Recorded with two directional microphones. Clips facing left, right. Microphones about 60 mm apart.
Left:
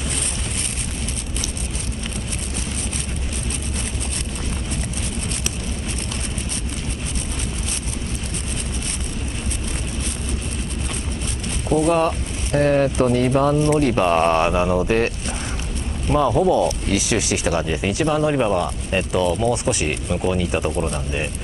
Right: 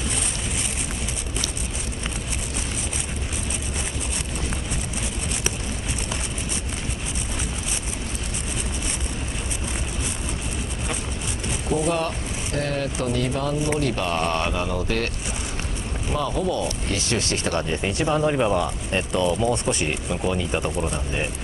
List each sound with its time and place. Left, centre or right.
11.7 s a sound: centre
12.5 s speech: left
16.2 s speech: left; by 21.3 s centre